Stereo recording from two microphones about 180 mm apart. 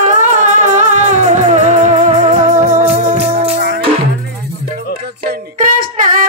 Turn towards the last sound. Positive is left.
turn(degrees=-50)  # may be behind; listen again after turning